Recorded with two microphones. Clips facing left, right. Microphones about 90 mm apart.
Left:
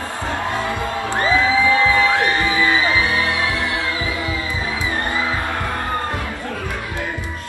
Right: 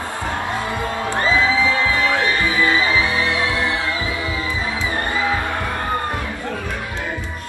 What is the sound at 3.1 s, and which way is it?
Music, 20° right (ahead or behind).